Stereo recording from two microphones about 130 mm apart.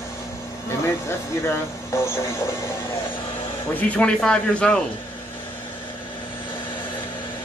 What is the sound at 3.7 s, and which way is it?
Speech, 10° left (ahead or behind).